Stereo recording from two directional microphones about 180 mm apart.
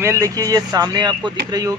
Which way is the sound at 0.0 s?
15° right (ahead or behind).